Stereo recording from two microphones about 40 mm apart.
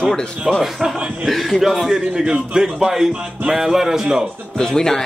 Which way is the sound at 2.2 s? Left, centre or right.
Centre.